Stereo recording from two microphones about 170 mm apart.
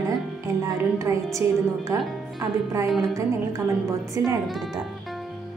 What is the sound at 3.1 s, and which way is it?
A woman's voice, 20° right (ahead or behind).